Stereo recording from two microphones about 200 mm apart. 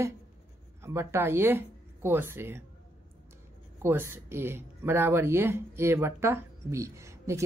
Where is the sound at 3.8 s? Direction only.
10° right (ahead or behind).